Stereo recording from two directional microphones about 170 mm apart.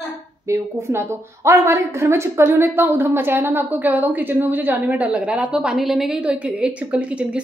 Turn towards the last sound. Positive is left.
turn(degrees=-5)  # may be behind; listen again after turning